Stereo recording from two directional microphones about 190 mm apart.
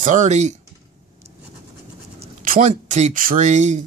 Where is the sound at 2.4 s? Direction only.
45° right (ahead or behind).